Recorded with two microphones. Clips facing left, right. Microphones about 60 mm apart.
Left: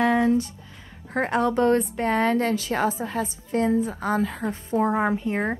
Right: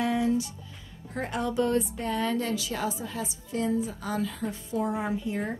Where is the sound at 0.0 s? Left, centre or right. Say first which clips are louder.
Left 6 dB; left.